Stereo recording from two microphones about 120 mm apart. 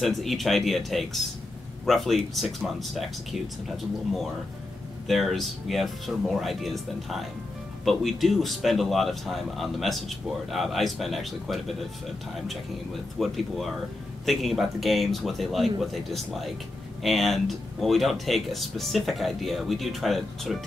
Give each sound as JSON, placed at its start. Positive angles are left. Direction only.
{"t": 0.0, "sound": "speech", "side_deg": 0}
{"t": 5.0, "sound": "speech", "side_deg": 0}
{"t": 13.2, "sound": "speech", "side_deg": 0}